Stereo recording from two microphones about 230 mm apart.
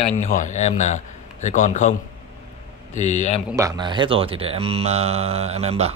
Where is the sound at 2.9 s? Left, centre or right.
Left.